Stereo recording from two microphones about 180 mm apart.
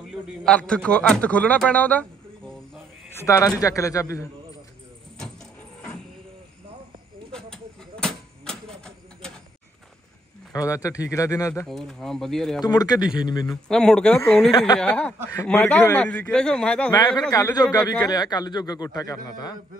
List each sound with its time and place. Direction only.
0.1 s a man's voice: 5° left (ahead or behind)
3.2 s a man's voice: 20° left (ahead or behind)
7.3 s a sound: 5° left (ahead or behind)
10.5 s a man's voice: 20° left (ahead or behind)
11.6 s speech: centre (ahead or behind)
12.6 s a man's voice: 20° left (ahead or behind)
13.7 s a man's voice: 5° left (ahead or behind)
16.9 s a man's voice: 20° left (ahead or behind)